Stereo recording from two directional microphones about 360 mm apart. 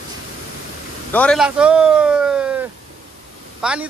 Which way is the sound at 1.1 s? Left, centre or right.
Centre.